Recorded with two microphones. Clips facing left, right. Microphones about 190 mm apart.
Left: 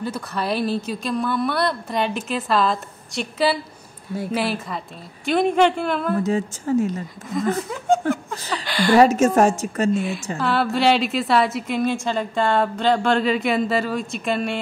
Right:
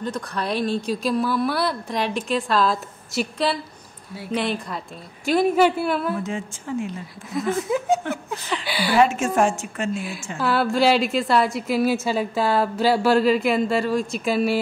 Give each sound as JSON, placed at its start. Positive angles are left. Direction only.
{"t": 0.0, "sound": "a woman's voice", "side_deg": 5}
{"t": 6.2, "sound": "a woman's voice", "side_deg": 40}
{"t": 7.6, "sound": "a woman's voice", "side_deg": -5}
{"t": 8.4, "sound": "a woman's voice", "side_deg": 35}
{"t": 8.6, "sound": "speech", "side_deg": -5}
{"t": 8.9, "sound": "a woman's voice", "side_deg": 40}
{"t": 9.9, "sound": "a woman's voice", "side_deg": 0}